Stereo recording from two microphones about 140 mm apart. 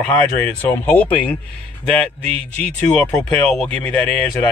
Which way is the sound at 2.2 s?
45° right (ahead or behind).